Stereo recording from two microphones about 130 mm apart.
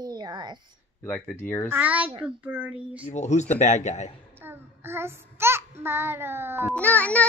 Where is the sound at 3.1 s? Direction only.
60° left (ahead or behind).